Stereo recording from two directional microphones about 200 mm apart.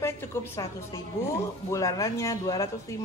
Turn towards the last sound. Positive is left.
turn(degrees=15)  # may be behind; listen again after turning